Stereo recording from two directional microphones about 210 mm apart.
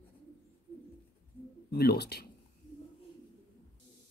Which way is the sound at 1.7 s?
50° left (ahead or behind).